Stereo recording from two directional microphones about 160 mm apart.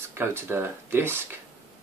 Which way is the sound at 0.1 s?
15° right (ahead or behind).